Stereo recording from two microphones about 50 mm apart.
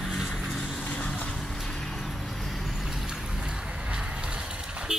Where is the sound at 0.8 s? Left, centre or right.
Left.